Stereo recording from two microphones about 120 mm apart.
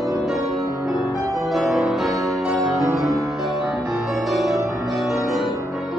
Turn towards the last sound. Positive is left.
turn(degrees=0)  # may be behind; listen again after turning